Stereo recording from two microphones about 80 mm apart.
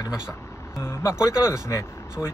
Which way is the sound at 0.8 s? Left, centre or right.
Left.